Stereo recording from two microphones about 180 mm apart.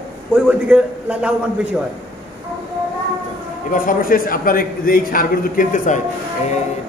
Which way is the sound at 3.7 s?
45° left (ahead or behind).